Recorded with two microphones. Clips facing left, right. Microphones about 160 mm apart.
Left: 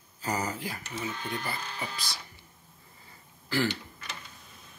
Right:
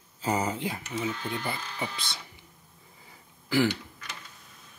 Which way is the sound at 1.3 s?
20° right (ahead or behind).